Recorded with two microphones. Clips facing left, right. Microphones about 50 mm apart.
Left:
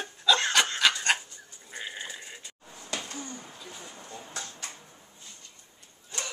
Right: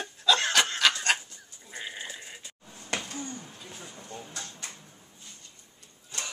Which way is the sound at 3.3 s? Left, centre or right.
Centre.